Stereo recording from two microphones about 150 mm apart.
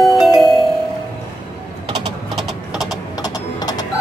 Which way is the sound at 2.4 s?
Centre (ahead or behind).